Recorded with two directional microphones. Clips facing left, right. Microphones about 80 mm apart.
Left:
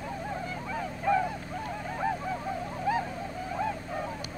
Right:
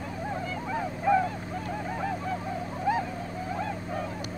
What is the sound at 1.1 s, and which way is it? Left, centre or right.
Honk, centre.